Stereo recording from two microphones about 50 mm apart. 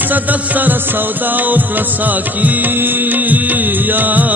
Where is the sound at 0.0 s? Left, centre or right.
Right.